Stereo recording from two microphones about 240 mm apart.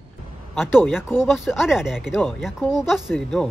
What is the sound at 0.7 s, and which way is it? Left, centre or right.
Speech, centre.